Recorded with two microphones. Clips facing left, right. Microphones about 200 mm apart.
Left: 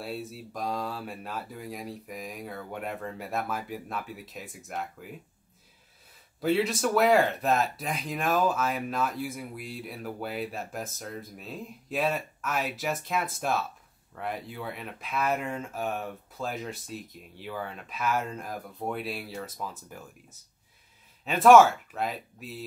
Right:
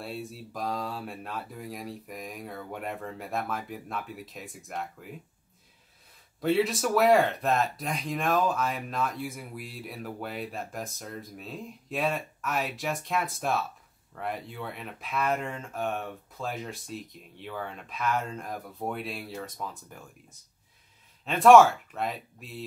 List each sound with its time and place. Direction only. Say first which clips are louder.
0.0 s speech: left 1 dB; centre (ahead or behind)
6.4 s speech: even; centre (ahead or behind)